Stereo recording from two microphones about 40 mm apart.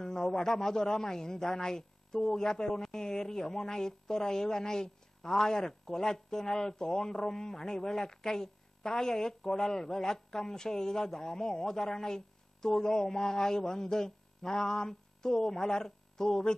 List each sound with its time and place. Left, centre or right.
0.0 s a man's voice: centre